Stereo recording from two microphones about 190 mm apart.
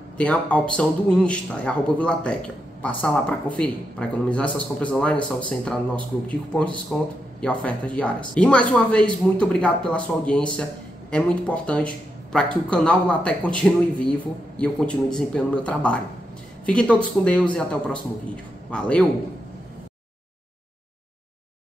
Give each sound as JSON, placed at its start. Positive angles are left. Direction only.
{"t": 0.2, "sound": "a man's voice", "side_deg": 5}
{"t": 15.1, "sound": "a man's voice", "side_deg": 5}